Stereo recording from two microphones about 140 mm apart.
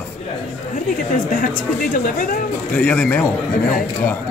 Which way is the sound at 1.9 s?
75° left (ahead or behind).